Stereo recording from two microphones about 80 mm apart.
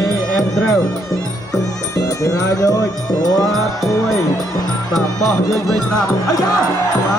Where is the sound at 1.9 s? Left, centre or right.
Left.